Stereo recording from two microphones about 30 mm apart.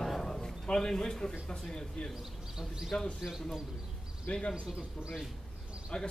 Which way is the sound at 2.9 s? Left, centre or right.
Left.